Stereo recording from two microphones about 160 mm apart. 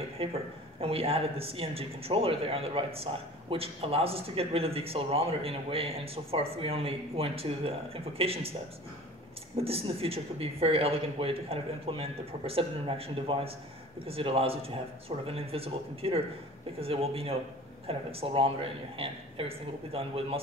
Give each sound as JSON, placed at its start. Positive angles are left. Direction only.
{"t": 0.2, "sound": "speech", "side_deg": -35}
{"t": 9.6, "sound": "speech", "side_deg": -35}